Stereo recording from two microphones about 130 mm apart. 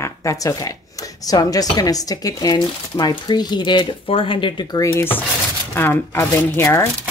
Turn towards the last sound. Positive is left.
turn(degrees=20)  # may be behind; listen again after turning